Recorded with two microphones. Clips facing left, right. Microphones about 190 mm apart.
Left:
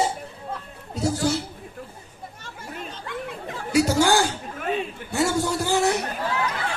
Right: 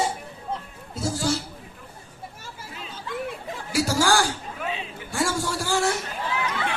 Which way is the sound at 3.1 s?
60° left (ahead or behind).